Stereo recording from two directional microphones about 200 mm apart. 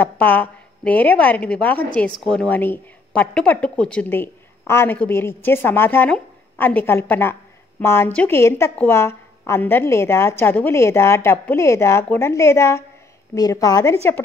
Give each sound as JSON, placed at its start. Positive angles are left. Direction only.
{"t": 0.0, "sound": "a woman's voice", "side_deg": 10}